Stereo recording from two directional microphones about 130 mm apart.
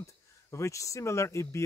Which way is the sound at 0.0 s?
20° left (ahead or behind).